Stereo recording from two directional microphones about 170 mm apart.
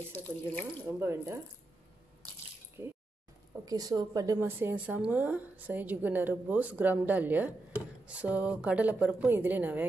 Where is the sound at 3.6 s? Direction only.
20° right (ahead or behind).